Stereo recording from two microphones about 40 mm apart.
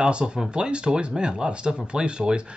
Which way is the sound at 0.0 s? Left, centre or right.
Right.